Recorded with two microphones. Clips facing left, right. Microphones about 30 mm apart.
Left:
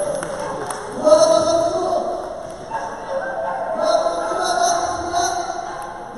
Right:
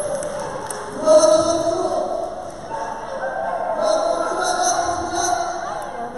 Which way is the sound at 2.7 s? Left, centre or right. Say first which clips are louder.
Left 1 dB; centre.